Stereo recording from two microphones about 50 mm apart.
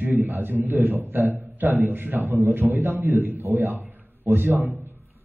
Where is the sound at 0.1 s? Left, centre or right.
Right.